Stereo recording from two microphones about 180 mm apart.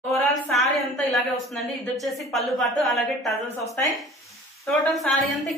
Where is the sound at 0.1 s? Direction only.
Centre (ahead or behind).